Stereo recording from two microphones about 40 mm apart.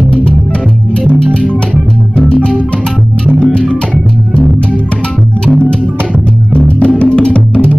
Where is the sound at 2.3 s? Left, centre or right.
Left.